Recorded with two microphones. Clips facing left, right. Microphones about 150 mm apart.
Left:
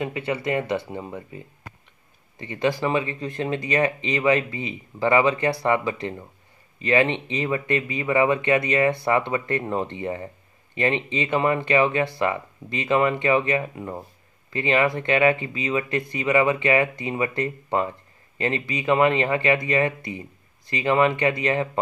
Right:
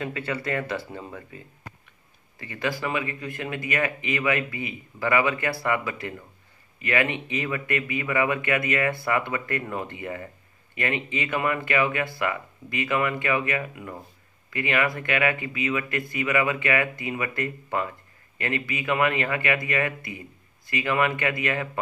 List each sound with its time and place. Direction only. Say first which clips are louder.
0.0 s speech: left 4 dB; 20° left (ahead or behind)